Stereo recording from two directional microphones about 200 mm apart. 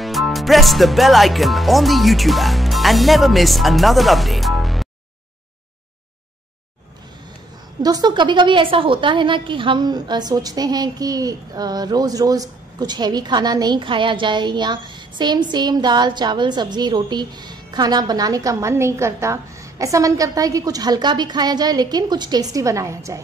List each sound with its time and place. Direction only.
0.0 s speech: centre (ahead or behind)
7.8 s a woman's voice: 20° right (ahead or behind)